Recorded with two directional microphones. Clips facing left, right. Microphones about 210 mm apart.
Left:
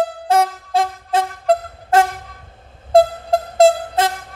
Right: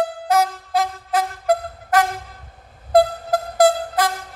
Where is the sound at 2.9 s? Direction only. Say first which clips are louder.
Left 3 dB; 25° left (ahead or behind).